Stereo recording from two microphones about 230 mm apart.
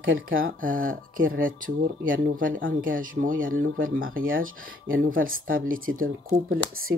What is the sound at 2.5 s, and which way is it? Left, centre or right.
Speech, right.